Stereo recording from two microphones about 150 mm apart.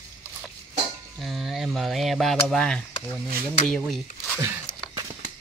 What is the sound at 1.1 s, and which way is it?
Speech, centre (ahead or behind).